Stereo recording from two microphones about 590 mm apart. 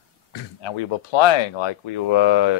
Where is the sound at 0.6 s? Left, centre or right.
Left.